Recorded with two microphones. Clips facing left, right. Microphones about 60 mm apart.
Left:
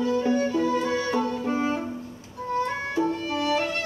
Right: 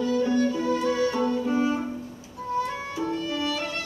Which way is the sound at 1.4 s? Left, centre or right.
Left.